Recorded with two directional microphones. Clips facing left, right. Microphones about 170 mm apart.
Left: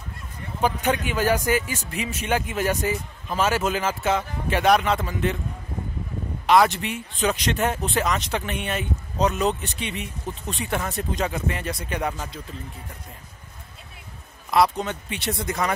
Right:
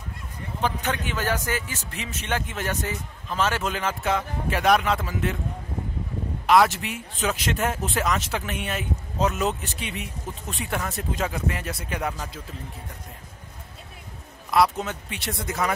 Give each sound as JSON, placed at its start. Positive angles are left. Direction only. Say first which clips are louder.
{"t": 0.6, "sound": "a man's voice", "louder": "left 4 dB", "side_deg": 10}
{"t": 6.4, "sound": "speech", "louder": "left 1 dB", "side_deg": 0}
{"t": 14.5, "sound": "speech", "louder": "left 1 dB", "side_deg": 0}